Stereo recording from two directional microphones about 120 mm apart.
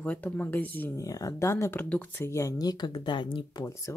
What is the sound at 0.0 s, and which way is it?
Speech, 15° left (ahead or behind).